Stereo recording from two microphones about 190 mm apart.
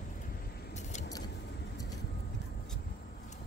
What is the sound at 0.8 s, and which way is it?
Vehicle, 40° left (ahead or behind).